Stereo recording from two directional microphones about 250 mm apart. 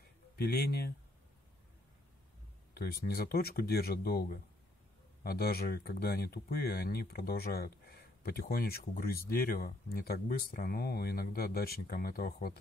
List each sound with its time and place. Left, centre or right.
0.4 s speech: left
2.7 s speech: left